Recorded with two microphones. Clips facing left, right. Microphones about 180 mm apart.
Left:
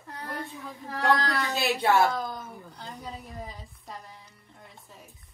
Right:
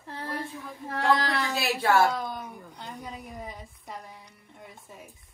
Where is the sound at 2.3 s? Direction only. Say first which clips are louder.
Right 1 dB; 15° right (ahead or behind).